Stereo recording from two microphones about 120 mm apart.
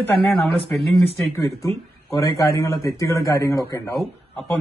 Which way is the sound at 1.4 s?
25° left (ahead or behind).